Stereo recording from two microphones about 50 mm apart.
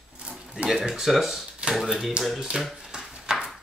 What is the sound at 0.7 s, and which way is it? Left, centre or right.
Speech, centre.